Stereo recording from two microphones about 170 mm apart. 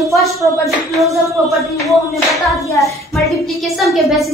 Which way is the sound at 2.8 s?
Centre (ahead or behind).